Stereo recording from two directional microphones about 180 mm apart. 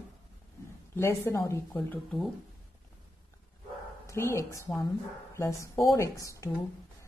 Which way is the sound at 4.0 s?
15° left (ahead or behind).